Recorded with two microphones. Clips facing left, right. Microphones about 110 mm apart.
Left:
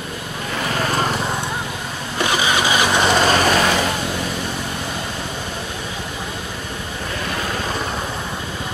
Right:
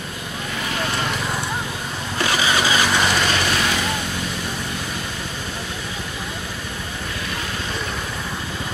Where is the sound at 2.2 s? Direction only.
20° left (ahead or behind).